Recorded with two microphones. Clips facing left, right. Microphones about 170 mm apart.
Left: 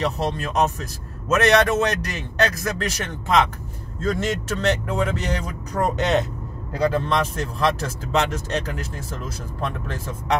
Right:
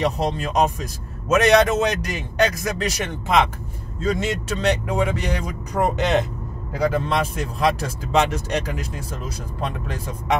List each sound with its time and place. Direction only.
0.0 s speech: 15° right (ahead or behind)